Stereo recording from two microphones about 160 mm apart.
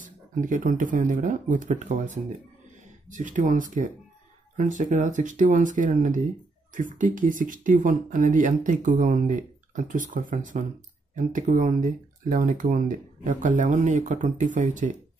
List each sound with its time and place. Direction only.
0.0 s speech: 55° right (ahead or behind)